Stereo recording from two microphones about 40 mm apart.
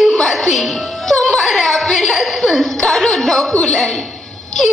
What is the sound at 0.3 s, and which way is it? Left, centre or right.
Music, centre.